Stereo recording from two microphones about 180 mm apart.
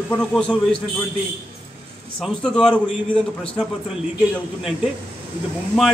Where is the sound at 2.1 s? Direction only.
5° left (ahead or behind).